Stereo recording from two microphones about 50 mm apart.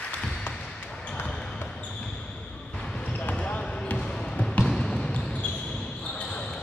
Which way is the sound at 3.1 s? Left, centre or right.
Left.